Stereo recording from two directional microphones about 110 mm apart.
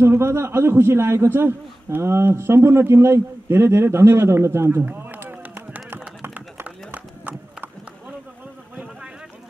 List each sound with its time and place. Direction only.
0.0 s a man's voice: 25° right (ahead or behind)
6.2 s clip-clop: 15° right (ahead or behind)